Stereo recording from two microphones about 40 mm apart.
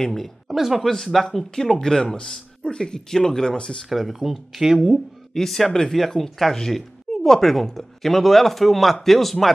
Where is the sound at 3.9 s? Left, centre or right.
Centre.